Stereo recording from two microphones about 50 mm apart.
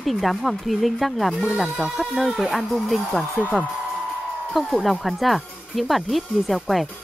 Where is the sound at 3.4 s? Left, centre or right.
Right.